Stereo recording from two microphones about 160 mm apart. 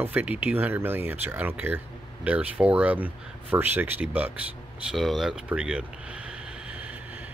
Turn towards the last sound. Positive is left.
turn(degrees=-5)  # may be behind; listen again after turning